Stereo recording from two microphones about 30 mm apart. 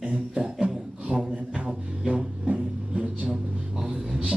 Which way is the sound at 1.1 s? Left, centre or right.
Right.